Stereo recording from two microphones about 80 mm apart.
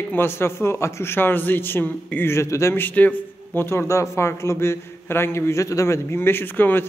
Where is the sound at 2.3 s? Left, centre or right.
Left.